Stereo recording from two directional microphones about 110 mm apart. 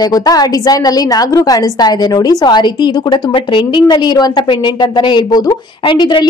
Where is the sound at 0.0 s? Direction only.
35° left (ahead or behind).